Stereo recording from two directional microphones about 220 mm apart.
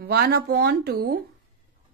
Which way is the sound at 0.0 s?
45° right (ahead or behind).